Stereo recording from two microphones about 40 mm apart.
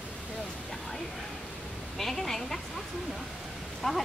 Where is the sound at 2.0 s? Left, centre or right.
Centre.